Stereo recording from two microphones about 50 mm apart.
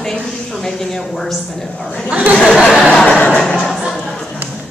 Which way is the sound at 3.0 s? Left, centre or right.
Left.